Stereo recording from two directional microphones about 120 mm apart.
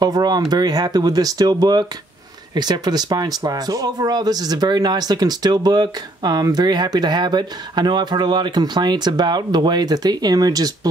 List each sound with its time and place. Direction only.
0.0 s speech: 35° right (ahead or behind)